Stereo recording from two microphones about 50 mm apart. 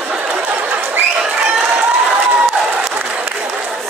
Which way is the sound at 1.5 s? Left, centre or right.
Right.